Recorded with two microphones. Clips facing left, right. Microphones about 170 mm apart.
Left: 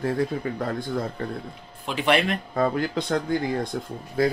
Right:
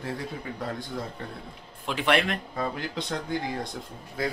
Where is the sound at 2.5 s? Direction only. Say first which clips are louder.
Left 7 dB; 50° left (ahead or behind).